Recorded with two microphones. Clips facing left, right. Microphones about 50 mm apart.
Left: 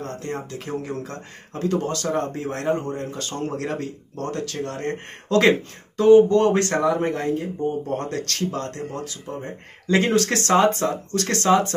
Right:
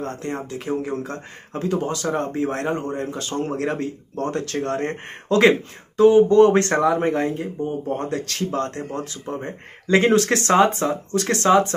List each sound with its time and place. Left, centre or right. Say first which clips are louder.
0.0 s speech: right 2 dB; right
1.7 s speech: even; centre
5.4 s speech: right 3 dB; centre
7.6 s speech: right 2 dB; centre
8.4 s speech: right 2 dB; right